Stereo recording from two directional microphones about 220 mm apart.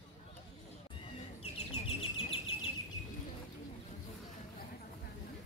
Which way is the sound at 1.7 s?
25° left (ahead or behind).